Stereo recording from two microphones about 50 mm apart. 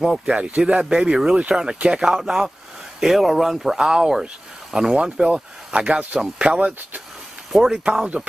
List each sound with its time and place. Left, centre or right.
0.0 s speech: centre